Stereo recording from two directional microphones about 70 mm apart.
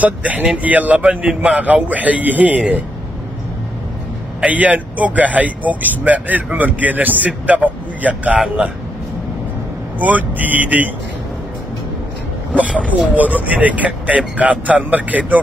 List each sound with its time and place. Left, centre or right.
0.0 s speech: right
4.4 s speech: right
9.9 s speech: right
12.5 s speech: right